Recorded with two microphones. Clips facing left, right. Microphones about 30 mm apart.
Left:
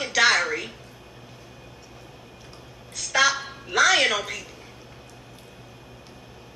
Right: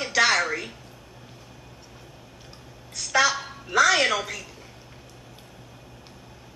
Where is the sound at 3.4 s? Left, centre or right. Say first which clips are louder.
Even; centre.